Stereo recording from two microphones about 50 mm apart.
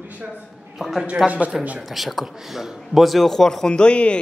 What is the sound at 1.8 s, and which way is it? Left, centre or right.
Speech, centre.